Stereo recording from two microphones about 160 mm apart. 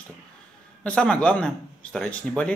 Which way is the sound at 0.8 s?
5° left (ahead or behind).